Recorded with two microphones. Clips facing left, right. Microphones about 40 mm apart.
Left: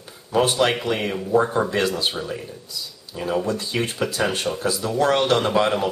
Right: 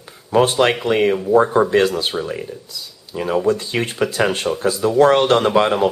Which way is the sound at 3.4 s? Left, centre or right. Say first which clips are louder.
Right 5 dB; right.